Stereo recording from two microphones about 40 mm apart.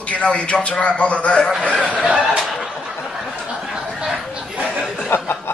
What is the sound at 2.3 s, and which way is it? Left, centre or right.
Snicker, centre.